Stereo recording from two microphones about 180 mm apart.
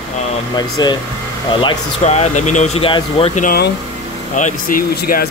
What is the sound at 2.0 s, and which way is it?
Speech, 40° left (ahead or behind).